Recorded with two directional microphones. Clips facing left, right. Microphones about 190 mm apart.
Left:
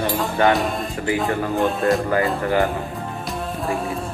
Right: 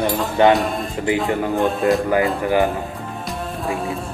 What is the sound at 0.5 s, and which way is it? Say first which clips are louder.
Music: right 2 dB; centre (ahead or behind).